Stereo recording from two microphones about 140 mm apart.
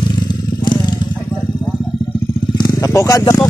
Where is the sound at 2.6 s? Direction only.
20° left (ahead or behind).